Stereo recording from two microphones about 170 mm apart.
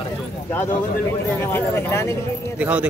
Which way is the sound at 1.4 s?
15° left (ahead or behind).